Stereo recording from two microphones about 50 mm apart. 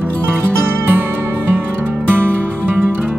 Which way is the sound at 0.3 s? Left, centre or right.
Right.